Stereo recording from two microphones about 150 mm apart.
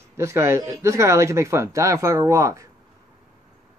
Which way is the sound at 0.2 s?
15° right (ahead or behind).